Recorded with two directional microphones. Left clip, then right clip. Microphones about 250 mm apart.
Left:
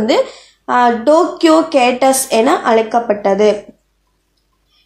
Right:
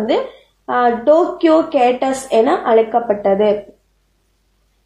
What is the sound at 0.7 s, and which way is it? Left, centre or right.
A woman's voice, left.